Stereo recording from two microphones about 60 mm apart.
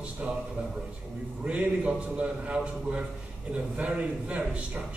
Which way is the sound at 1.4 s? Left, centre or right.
Right.